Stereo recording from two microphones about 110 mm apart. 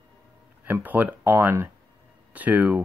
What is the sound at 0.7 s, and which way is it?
Speech, 15° right (ahead or behind).